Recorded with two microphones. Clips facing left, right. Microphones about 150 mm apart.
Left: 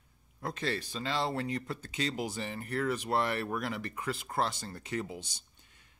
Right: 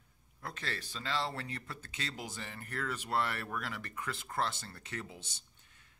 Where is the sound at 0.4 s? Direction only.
20° left (ahead or behind).